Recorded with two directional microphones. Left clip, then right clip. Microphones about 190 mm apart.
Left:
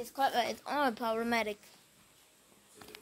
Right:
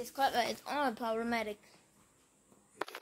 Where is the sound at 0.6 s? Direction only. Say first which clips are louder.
Left 3 dB; 20° left (ahead or behind).